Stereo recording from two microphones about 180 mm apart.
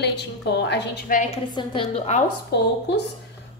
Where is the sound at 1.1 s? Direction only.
40° left (ahead or behind).